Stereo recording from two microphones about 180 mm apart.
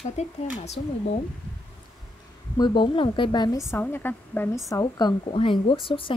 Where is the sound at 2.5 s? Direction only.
25° left (ahead or behind).